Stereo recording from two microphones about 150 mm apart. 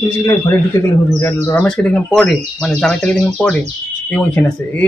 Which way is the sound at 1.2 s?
10° left (ahead or behind).